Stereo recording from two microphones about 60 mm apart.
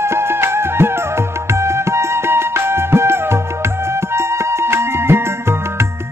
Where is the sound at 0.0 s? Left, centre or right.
Right.